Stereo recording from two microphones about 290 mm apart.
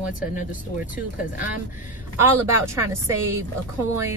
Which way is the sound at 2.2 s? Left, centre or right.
Centre.